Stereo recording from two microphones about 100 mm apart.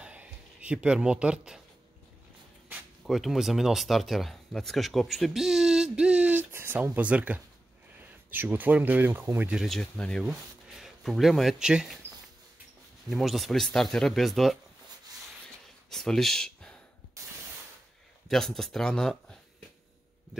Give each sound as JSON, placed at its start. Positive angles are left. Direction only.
{"t": 0.0, "sound": "a sound", "side_deg": -10}
{"t": 3.0, "sound": "speech", "side_deg": 0}
{"t": 9.5, "sound": "speech", "side_deg": 0}
{"t": 10.7, "sound": "speech", "side_deg": 0}
{"t": 13.1, "sound": "speech", "side_deg": 0}
{"t": 15.9, "sound": "speech", "side_deg": 5}
{"t": 18.3, "sound": "speech", "side_deg": 5}